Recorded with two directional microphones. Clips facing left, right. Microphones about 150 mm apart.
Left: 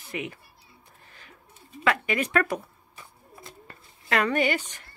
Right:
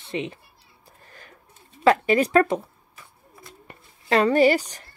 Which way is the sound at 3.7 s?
30° right (ahead or behind).